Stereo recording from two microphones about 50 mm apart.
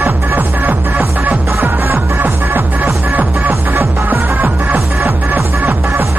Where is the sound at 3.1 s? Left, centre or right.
Right.